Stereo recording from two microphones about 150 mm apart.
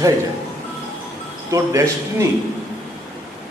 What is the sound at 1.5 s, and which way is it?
Speech, 20° right (ahead or behind).